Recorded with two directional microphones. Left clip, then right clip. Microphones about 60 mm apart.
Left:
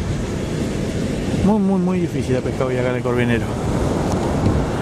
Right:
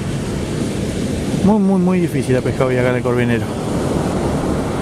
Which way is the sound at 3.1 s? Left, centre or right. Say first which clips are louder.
Right 2 dB; centre.